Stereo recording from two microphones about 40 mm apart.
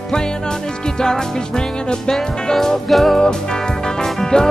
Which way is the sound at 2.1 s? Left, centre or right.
Centre.